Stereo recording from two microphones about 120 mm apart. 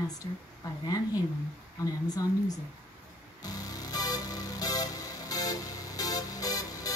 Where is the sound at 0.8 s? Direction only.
30° left (ahead or behind).